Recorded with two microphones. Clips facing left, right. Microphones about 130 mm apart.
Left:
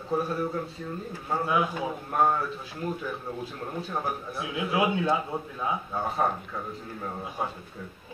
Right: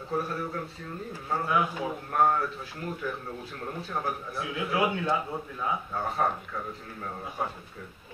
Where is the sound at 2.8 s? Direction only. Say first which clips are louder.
Left 2 dB; 25° left (ahead or behind).